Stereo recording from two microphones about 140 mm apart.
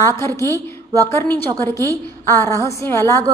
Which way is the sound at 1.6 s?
20° left (ahead or behind).